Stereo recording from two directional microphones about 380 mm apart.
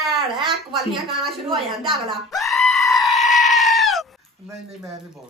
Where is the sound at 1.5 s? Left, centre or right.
Centre.